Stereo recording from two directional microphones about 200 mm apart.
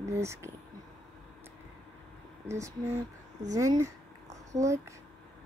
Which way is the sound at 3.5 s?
15° right (ahead or behind).